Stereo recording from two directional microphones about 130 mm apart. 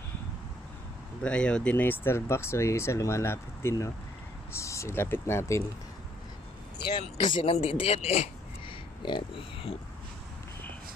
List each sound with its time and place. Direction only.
1.2 s speech: 10° left (ahead or behind)
7.2 s speech: 40° left (ahead or behind)
7.5 s speech: 50° left (ahead or behind)
9.0 s speech: 40° left (ahead or behind)